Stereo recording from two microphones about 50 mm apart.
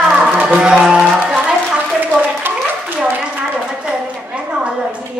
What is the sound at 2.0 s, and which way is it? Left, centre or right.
Clapping, right.